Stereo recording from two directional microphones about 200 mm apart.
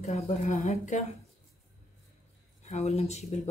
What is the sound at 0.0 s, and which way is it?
Speech, 35° left (ahead or behind).